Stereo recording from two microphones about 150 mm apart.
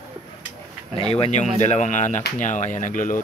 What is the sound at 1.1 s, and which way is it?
Speech, 45° left (ahead or behind).